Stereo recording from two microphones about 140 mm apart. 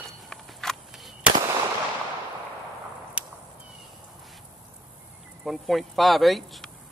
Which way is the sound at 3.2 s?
10° right (ahead or behind).